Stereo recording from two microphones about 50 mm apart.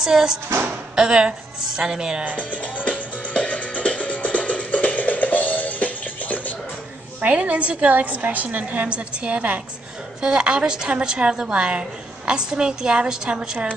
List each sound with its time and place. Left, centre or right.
0.0 s a woman's voice: centre
2.3 s music: left
7.3 s a woman's voice: right